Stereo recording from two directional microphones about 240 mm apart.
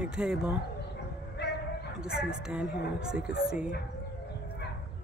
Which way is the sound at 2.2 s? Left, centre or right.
Centre.